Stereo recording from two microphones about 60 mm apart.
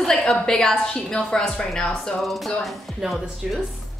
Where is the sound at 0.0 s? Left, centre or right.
Centre.